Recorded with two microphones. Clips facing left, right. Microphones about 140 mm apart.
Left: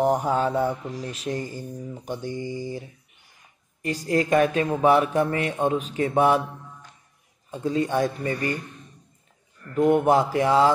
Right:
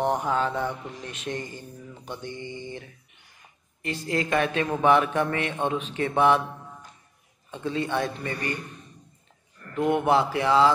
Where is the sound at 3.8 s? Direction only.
40° left (ahead or behind).